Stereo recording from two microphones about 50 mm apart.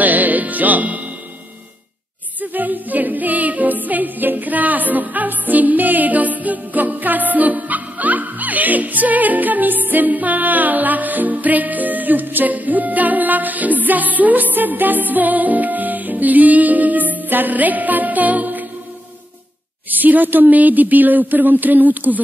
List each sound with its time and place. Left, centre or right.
0.0 s music: right
2.4 s music: right
19.9 s speech: right